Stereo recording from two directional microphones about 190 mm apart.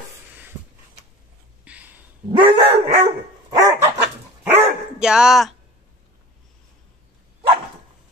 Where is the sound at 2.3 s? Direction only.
25° right (ahead or behind).